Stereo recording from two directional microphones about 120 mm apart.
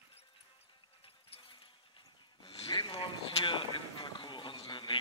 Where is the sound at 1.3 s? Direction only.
45° left (ahead or behind).